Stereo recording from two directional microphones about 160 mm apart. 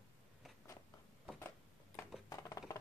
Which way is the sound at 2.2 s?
20° left (ahead or behind).